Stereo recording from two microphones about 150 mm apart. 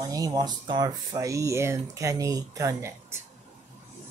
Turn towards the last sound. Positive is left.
turn(degrees=-20)  # may be behind; listen again after turning